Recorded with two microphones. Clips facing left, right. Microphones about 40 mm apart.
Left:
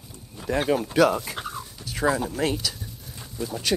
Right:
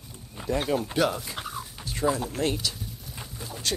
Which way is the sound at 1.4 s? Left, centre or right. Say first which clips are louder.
Left 2 dB; centre.